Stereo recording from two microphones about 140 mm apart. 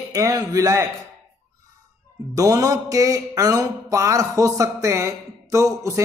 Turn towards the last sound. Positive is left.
turn(degrees=-20)  # may be behind; listen again after turning